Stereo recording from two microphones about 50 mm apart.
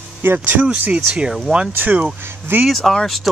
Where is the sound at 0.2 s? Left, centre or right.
Right.